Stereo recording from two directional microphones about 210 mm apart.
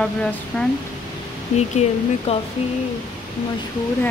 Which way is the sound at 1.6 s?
30° left (ahead or behind).